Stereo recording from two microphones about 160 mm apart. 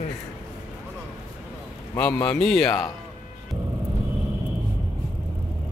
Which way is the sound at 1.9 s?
10° left (ahead or behind).